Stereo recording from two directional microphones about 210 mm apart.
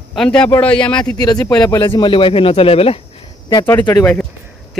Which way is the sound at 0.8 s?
20° left (ahead or behind).